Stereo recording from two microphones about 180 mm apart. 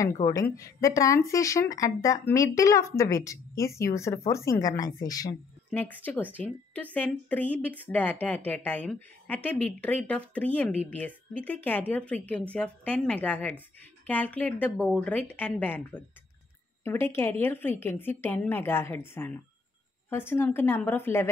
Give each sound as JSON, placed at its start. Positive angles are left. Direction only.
{"t": 0.0, "sound": "a woman's voice", "side_deg": 20}
{"t": 5.7, "sound": "speech", "side_deg": 10}